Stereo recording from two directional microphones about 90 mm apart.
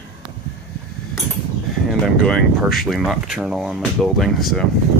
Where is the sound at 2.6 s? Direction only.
Centre (ahead or behind).